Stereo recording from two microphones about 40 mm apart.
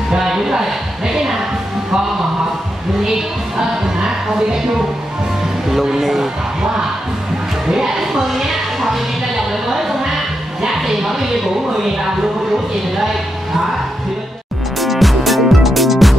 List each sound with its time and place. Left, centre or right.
0.2 s speech: centre
3.5 s speech: centre
5.7 s speech: centre
7.6 s speech: centre
14.8 s music: centre